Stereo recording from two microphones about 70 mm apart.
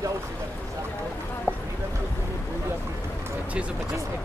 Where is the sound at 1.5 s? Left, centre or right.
Left.